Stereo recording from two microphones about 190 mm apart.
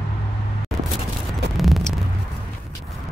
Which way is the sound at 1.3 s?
Centre (ahead or behind).